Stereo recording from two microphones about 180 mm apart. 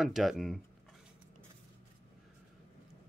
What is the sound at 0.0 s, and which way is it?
Speech, centre (ahead or behind).